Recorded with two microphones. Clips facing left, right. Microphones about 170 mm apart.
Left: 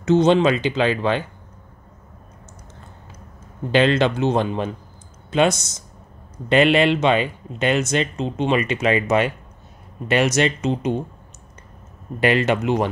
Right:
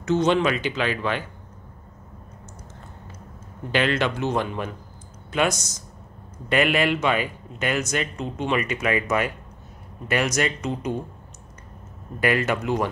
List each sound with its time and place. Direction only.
0.0 s speech: 25° left (ahead or behind)
3.7 s speech: 25° left (ahead or behind)
12.2 s speech: 25° left (ahead or behind)